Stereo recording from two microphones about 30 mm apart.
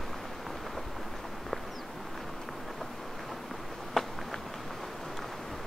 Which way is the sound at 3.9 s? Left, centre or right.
Centre.